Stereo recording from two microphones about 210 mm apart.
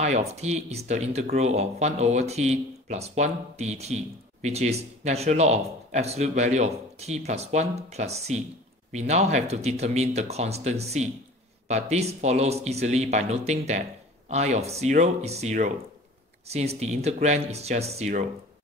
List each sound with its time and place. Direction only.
0.0 s speech: 30° right (ahead or behind)